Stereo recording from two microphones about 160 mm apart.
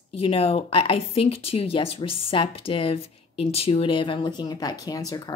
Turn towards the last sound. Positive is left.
turn(degrees=25)  # may be behind; listen again after turning